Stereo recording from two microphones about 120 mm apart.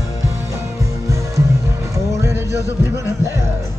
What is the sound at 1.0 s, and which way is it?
Music, 25° right (ahead or behind).